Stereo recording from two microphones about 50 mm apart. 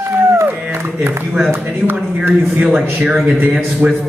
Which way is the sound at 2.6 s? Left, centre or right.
Right.